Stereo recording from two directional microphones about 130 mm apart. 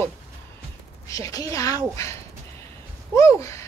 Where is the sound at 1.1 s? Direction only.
25° left (ahead or behind).